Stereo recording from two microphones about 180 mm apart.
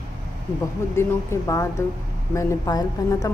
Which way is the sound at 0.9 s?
15° left (ahead or behind).